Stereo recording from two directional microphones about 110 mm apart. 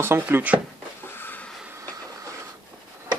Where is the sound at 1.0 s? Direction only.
20° left (ahead or behind).